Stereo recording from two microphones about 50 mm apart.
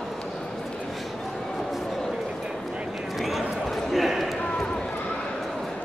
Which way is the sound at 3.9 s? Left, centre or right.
Centre.